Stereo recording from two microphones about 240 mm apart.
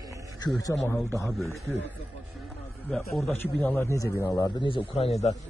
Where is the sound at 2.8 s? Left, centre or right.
Centre; by 5.3 s left.